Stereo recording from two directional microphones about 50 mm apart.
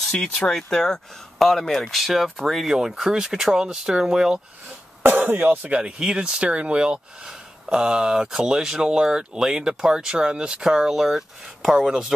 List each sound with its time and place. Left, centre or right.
0.0 s speech: centre
5.0 s speech: right
5.6 s speech: right
11.0 s speech: centre